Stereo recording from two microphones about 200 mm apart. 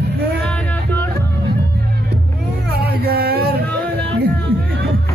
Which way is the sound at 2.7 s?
50° right (ahead or behind).